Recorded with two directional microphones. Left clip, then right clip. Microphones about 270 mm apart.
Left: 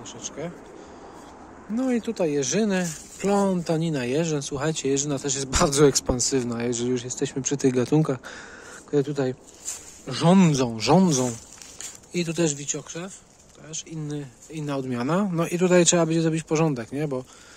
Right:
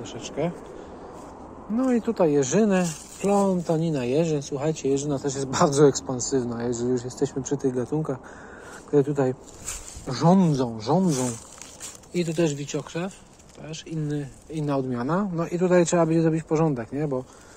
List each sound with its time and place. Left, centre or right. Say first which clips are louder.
0.0 s speech: right 2 dB; centre
1.8 s speech: right 3 dB; left
10.0 s speech: left 1 dB; left
15.3 s a man's voice: left 1 dB; left